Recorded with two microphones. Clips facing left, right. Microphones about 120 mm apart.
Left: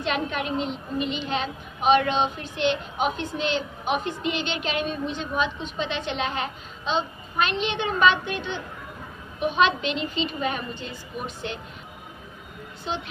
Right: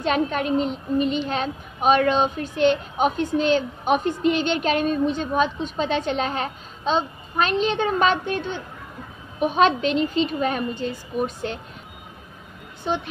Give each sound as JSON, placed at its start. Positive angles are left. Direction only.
{"t": 0.0, "sound": "a woman's voice", "side_deg": -40}